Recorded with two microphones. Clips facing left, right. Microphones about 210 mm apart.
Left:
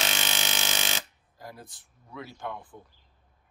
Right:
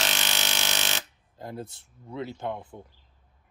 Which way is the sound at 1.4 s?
25° right (ahead or behind).